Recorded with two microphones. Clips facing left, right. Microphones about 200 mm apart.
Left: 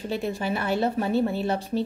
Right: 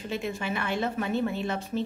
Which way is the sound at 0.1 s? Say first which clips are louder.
Left 4 dB; 35° left (ahead or behind).